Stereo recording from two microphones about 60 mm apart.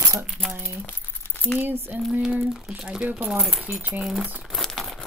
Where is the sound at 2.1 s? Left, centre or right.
Centre.